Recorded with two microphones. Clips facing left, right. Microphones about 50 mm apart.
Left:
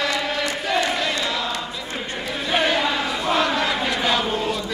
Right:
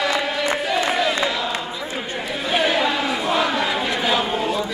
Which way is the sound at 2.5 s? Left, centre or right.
Centre.